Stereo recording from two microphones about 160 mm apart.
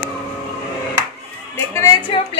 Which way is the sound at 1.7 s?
20° left (ahead or behind).